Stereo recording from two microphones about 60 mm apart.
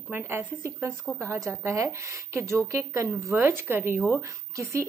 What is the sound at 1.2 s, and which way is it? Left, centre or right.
A woman's voice, right.